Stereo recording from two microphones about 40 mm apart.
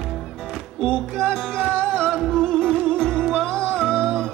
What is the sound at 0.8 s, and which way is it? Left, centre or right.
Music, centre.